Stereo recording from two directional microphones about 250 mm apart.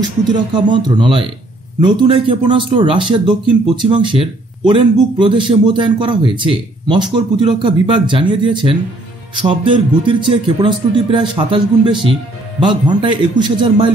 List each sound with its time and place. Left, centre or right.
0.3 s speech: centre